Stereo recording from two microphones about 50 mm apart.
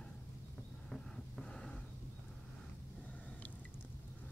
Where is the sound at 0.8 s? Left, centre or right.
Centre.